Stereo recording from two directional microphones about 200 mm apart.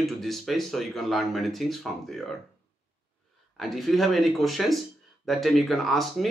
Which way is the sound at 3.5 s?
Centre (ahead or behind).